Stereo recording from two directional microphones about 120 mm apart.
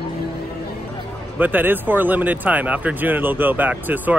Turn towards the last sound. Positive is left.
turn(degrees=-15)  # may be behind; listen again after turning